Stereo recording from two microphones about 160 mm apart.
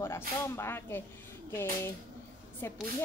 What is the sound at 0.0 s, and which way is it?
Speech, 15° left (ahead or behind).